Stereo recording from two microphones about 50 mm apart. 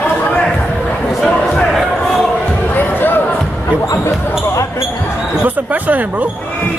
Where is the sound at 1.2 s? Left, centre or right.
Left.